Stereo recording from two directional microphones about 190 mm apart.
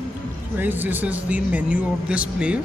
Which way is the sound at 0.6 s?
10° right (ahead or behind).